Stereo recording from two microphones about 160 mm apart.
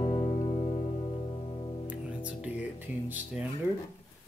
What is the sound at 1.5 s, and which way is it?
Music, 35° left (ahead or behind).